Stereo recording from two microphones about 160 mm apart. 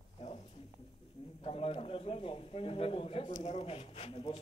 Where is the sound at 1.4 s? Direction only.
35° left (ahead or behind).